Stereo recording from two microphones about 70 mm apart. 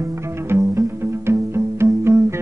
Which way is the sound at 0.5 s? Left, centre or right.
Right.